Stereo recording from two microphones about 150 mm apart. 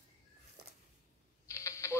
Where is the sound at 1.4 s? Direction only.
20° left (ahead or behind).